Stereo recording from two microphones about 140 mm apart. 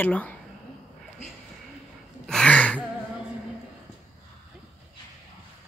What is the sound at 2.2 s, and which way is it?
Throat clearing, 5° left (ahead or behind).